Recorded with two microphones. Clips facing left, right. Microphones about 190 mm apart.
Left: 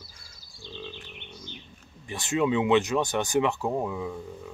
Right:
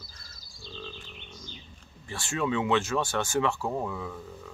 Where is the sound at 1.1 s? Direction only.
65° left (ahead or behind).